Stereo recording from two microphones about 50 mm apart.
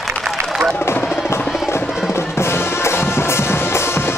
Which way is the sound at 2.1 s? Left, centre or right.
Left.